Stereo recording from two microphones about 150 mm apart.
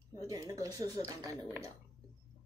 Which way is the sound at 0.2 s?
25° right (ahead or behind).